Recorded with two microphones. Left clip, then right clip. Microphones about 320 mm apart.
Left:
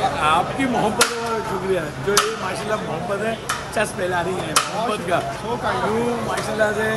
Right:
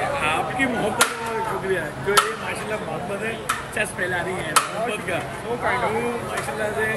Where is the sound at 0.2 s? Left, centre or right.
Centre.